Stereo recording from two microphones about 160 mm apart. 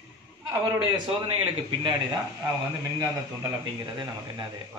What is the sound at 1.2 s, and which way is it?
Speech, 35° right (ahead or behind).